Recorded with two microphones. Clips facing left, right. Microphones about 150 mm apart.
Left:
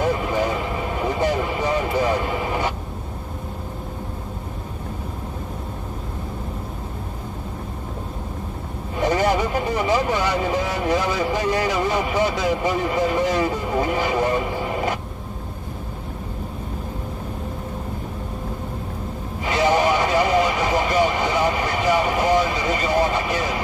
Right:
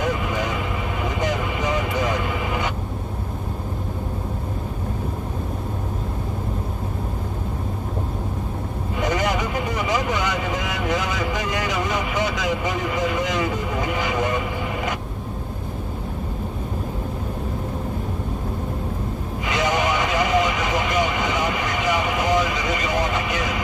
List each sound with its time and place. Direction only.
0.0 s vehicle: 35° left (ahead or behind)
9.0 s vehicle: 35° left (ahead or behind)
19.4 s a sound: 30° left (ahead or behind)